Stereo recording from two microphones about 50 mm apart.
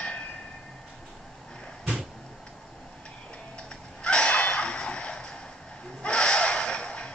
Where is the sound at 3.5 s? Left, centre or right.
Centre.